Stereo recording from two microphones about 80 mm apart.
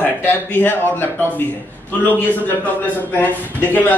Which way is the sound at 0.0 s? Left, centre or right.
Left.